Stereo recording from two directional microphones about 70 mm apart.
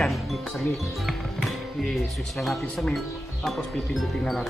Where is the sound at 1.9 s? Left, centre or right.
Centre.